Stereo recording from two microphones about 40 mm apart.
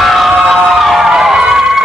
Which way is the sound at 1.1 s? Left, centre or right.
Centre.